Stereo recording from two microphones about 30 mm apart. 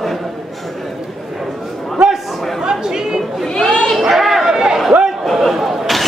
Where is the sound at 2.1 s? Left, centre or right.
Right.